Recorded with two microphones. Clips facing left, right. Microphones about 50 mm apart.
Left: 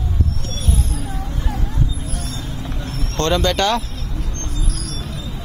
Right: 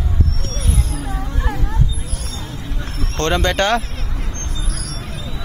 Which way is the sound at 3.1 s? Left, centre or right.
Right.